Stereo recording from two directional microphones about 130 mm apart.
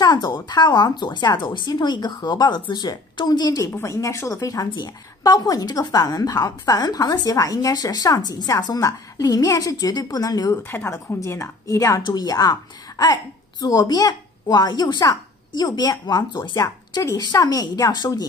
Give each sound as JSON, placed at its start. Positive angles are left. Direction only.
{"t": 0.0, "sound": "a woman's voice", "side_deg": 35}
{"t": 10.7, "sound": "a woman's voice", "side_deg": 15}